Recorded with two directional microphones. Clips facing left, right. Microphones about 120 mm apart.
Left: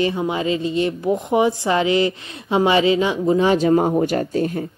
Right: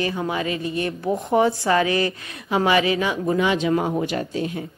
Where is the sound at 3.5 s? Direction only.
40° left (ahead or behind).